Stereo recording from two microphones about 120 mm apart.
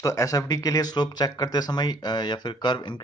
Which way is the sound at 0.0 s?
30° left (ahead or behind).